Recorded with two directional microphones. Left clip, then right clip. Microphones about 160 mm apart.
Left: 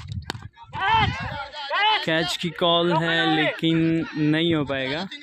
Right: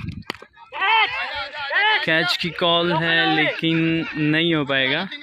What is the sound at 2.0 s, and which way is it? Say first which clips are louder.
Speech: right 4 dB; 15° left (ahead or behind).